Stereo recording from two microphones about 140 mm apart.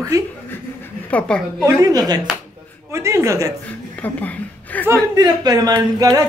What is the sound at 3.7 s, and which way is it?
A woman's voice, 10° left (ahead or behind).